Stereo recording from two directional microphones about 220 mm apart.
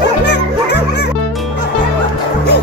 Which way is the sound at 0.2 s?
50° left (ahead or behind).